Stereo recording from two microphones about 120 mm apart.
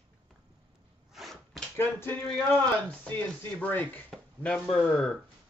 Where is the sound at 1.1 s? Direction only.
Centre (ahead or behind).